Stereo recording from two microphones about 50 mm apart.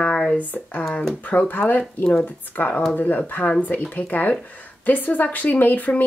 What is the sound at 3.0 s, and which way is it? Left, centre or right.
Speech, left.